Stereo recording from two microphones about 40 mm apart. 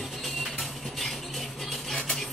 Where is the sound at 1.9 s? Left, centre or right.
Centre.